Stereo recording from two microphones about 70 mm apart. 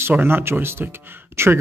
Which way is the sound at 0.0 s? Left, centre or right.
Right.